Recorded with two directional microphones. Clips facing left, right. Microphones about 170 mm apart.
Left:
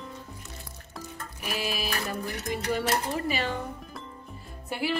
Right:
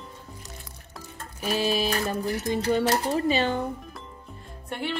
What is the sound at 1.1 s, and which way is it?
Music, 30° right (ahead or behind).